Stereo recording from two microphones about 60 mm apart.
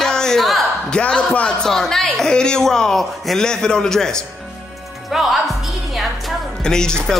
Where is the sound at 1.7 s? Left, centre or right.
Centre.